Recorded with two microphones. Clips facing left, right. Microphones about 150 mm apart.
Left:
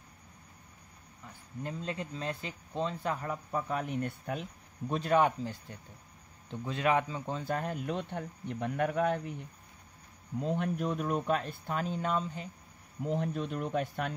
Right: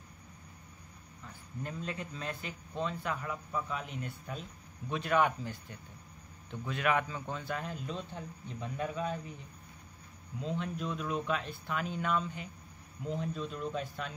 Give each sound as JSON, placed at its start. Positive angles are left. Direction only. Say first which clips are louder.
{"t": 1.2, "sound": "speech", "louder": "left 2 dB", "side_deg": 25}
{"t": 4.8, "sound": "speech", "louder": "left 3 dB", "side_deg": 35}
{"t": 7.4, "sound": "speech", "louder": "left 5 dB", "side_deg": 50}
{"t": 10.4, "sound": "speech", "louder": "left 4 dB", "side_deg": 55}
{"t": 13.0, "sound": "speech", "louder": "left 4 dB", "side_deg": 60}